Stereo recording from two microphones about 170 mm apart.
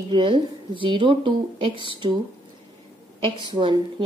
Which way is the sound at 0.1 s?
30° right (ahead or behind).